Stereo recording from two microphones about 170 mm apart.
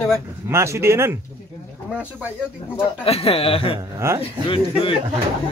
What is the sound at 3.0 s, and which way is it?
Speech, 35° left (ahead or behind).